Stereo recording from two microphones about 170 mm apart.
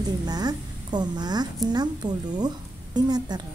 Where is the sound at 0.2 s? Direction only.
25° right (ahead or behind).